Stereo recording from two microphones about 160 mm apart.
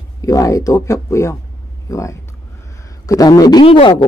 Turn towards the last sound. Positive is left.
turn(degrees=30)  # may be behind; listen again after turning